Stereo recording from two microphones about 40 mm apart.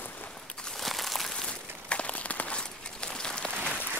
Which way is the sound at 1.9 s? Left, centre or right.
Left.